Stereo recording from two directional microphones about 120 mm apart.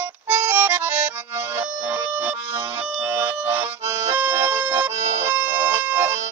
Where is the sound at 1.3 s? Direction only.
20° right (ahead or behind).